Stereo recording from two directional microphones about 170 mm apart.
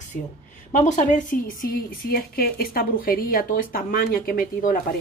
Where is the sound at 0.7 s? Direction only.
45° left (ahead or behind).